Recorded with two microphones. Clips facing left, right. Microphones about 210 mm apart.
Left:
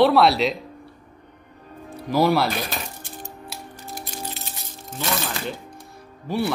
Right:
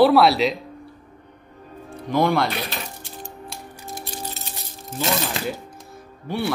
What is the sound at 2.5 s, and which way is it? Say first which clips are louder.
Dishes: left 1 dB; 45° left (ahead or behind).